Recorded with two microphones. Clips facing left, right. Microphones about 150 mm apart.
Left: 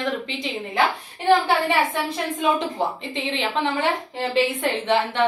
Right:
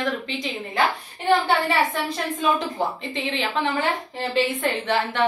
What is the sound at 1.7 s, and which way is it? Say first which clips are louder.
Speech: left 1 dB; 10° left (ahead or behind).